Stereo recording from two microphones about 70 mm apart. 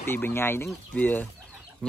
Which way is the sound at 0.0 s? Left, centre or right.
Left.